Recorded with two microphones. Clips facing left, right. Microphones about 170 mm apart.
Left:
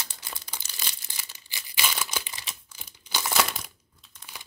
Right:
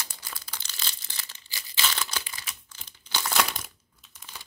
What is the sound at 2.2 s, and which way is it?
Camera, 25° left (ahead or behind).